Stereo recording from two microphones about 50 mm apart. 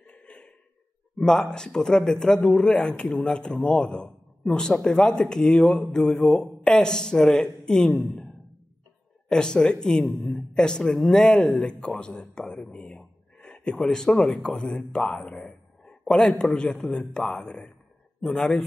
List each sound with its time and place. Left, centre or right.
0.0 s a sound: left
1.1 s speech: centre
2.8 s speech: centre
9.3 s speech: centre
12.7 s a sound: centre
13.8 s speech: centre